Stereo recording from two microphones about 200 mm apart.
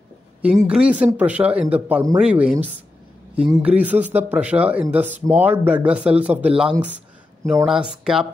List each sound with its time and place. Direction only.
0.4 s speech: 5° right (ahead or behind)